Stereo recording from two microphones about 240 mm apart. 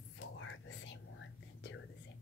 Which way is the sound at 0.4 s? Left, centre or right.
Left.